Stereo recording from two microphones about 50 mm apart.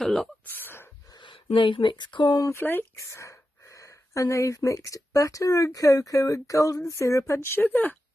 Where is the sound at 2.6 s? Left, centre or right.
Left.